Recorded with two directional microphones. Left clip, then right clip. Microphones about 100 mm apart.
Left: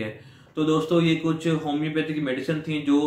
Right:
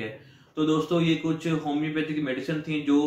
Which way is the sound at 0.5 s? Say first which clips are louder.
Left 3 dB; 20° left (ahead or behind).